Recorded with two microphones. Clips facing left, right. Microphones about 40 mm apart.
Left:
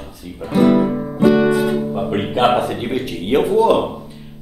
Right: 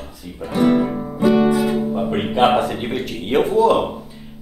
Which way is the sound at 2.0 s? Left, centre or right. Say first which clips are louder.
Left 1 dB; centre.